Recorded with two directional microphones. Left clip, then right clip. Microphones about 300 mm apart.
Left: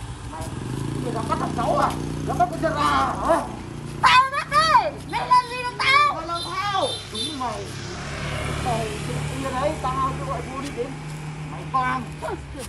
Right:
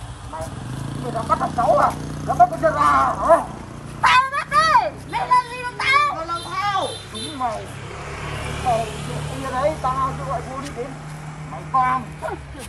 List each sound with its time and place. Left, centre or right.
1.1 s speech: centre
4.0 s music: centre
8.2 s vehicle: right
8.7 s speech: centre
9.5 s speech: centre
11.7 s speech: centre